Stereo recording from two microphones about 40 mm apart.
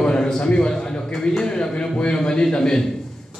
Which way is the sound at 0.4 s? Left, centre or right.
Left.